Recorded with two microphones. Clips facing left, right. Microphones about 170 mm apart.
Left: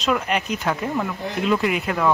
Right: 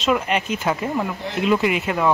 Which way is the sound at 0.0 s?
Centre (ahead or behind).